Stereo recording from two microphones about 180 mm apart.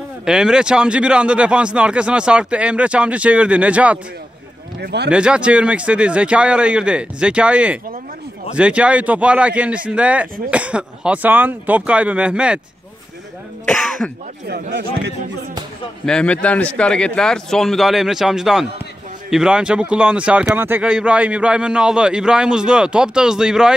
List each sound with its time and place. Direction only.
0.2 s speech: 5° right (ahead or behind)
4.7 s speech: 65° right (ahead or behind)
5.1 s speech: 5° right (ahead or behind)
13.7 s speech: centre (ahead or behind)
14.5 s speech: 65° right (ahead or behind)
16.1 s speech: 5° left (ahead or behind)